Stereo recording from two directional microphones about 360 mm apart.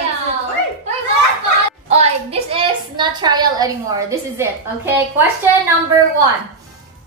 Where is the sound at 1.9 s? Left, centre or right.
Centre.